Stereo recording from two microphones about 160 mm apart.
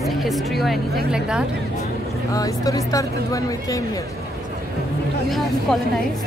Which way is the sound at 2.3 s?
20° left (ahead or behind).